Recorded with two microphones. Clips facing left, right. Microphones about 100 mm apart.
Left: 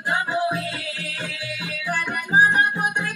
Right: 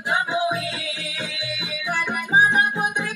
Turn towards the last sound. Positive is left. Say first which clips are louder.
# even
turn(degrees=-15)  # may be behind; listen again after turning